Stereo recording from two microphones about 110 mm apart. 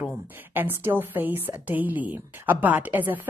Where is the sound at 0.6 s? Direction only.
20° right (ahead or behind).